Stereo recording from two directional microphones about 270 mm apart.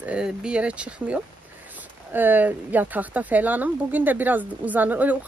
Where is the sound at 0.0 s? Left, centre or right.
Centre.